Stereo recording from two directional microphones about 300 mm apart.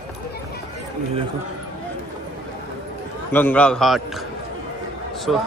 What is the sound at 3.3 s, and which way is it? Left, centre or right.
Speech, centre.